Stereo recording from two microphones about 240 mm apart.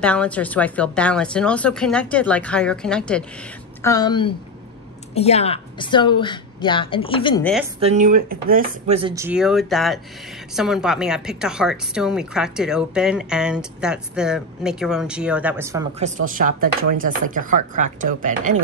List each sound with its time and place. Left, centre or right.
0.0 s a woman's voice: centre
3.8 s a woman's voice: centre
7.8 s speech: right
9.1 s a woman's voice: centre
16.0 s speech: right